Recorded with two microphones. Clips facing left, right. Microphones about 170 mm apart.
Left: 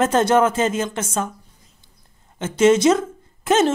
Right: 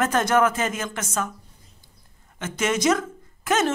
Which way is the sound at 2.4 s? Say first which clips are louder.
Left 9 dB; 25° left (ahead or behind).